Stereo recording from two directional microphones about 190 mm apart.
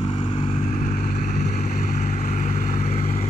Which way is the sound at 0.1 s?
25° left (ahead or behind).